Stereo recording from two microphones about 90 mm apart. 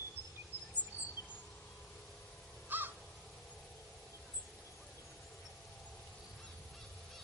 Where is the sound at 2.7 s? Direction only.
20° right (ahead or behind).